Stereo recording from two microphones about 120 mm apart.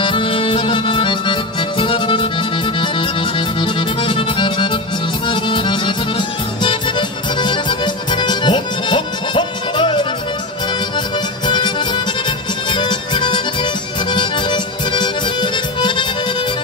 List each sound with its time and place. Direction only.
0.0 s music: 45° left (ahead or behind)
5.3 s accordion: 40° left (ahead or behind)
11.4 s music: 40° left (ahead or behind)
12.7 s music: 40° left (ahead or behind)